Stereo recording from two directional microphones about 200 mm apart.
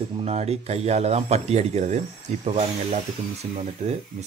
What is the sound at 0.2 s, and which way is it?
Speech, 30° right (ahead or behind).